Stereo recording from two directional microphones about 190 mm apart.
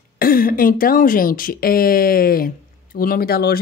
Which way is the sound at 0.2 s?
50° left (ahead or behind).